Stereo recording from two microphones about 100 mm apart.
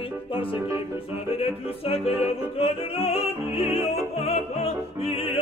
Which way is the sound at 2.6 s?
80° left.